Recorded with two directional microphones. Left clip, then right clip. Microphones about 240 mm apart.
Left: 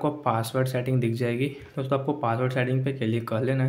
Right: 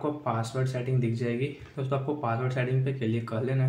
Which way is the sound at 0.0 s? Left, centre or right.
Left.